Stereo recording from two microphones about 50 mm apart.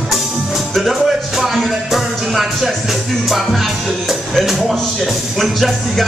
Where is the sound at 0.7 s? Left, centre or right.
Centre.